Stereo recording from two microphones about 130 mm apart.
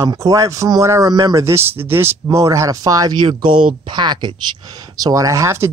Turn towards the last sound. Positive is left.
turn(degrees=-20)  # may be behind; listen again after turning